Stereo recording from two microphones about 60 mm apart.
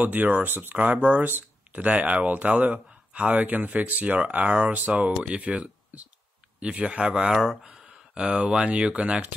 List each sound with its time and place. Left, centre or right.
0.0 s speech: right
0.7 s speech: right; by 7.5 s centre
7.7 s speech: centre